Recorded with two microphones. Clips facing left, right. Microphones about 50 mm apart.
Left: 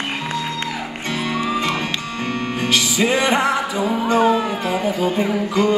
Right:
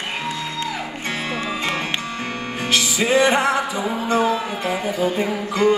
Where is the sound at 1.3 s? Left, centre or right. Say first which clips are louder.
Left 5 dB; right.